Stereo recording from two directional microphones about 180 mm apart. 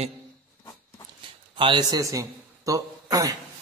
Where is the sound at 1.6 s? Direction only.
25° right (ahead or behind).